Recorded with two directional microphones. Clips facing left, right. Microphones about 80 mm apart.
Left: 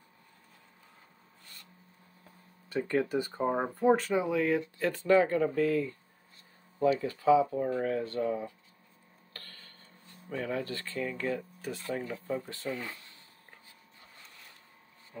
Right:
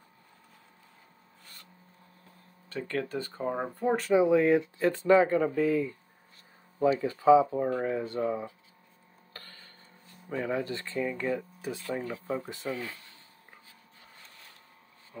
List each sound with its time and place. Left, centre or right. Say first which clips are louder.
2.7 s speech: left 4 dB; centre
3.9 s speech: right 3 dB; centre
4.2 s speech: right 6 dB; right
9.3 s tick-tock: right 2 dB; centre
10.3 s speech: right 3 dB; centre